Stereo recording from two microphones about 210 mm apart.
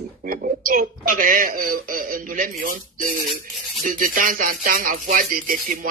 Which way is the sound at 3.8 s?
40° right (ahead or behind).